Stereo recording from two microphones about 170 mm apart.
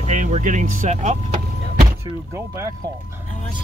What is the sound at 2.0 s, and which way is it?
Speech, 20° right (ahead or behind).